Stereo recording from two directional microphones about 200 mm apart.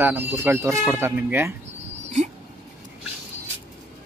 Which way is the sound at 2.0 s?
35° right (ahead or behind).